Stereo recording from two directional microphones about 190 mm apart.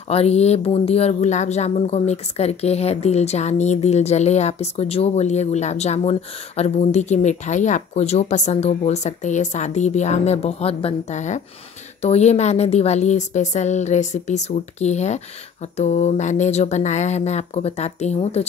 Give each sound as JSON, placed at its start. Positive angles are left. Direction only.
{"t": 0.1, "sound": "speech", "side_deg": 35}